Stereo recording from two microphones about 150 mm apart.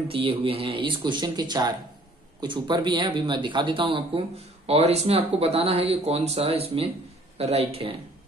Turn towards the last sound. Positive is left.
turn(degrees=-40)  # may be behind; listen again after turning